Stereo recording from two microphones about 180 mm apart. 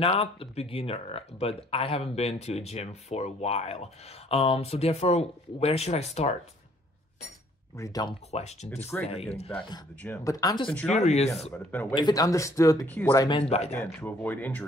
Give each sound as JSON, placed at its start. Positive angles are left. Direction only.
{"t": 0.0, "sound": "speech", "side_deg": 30}
{"t": 7.7, "sound": "speech", "side_deg": 20}
{"t": 8.3, "sound": "speech", "side_deg": 35}
{"t": 10.0, "sound": "speech", "side_deg": 15}
{"t": 10.9, "sound": "speech", "side_deg": 40}
{"t": 11.5, "sound": "speech", "side_deg": 10}
{"t": 11.9, "sound": "speech", "side_deg": 20}
{"t": 13.1, "sound": "speech", "side_deg": 20}
{"t": 13.4, "sound": "speech", "side_deg": 35}
{"t": 13.9, "sound": "speech", "side_deg": 10}